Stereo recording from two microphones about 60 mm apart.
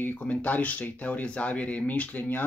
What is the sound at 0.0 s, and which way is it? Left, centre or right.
Speech, left.